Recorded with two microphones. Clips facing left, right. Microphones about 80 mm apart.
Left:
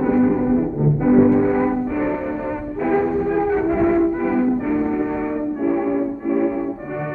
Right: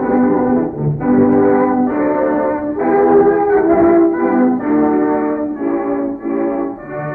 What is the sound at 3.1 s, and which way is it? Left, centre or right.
Music, right.